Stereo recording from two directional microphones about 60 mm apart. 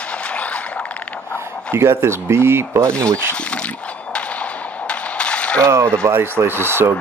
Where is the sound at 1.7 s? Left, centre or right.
Right.